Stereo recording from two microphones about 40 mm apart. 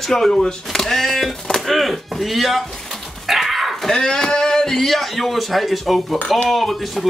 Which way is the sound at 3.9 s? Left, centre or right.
Centre.